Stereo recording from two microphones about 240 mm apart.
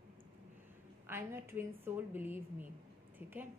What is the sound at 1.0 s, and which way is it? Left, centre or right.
A woman's voice, centre.